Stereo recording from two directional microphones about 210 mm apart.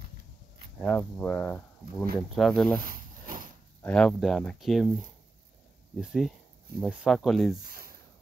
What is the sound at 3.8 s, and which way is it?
Speech, 5° left (ahead or behind).